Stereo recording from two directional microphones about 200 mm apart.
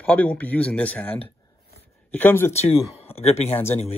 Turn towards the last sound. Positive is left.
turn(degrees=35)  # may be behind; listen again after turning